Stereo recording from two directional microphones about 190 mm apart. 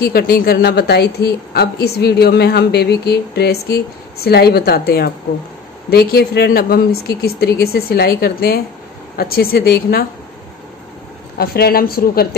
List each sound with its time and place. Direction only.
0.0 s a woman's voice: 55° left (ahead or behind)
11.3 s a woman's voice: 55° left (ahead or behind)